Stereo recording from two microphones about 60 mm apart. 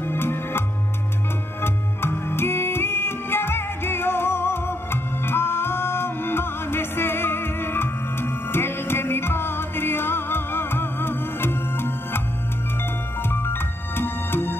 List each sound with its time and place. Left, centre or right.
0.0 s music: left
13.3 s music: left